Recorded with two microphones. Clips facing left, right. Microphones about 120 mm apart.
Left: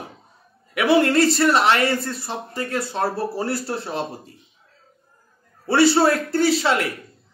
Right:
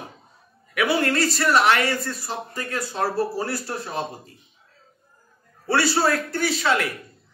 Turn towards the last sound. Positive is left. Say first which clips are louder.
# left 4 dB
turn(degrees=30)  # may be behind; listen again after turning